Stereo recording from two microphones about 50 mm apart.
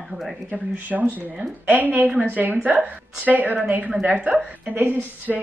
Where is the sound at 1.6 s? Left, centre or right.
Right.